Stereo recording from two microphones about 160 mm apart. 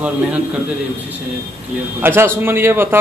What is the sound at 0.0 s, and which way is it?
Speech, 10° right (ahead or behind).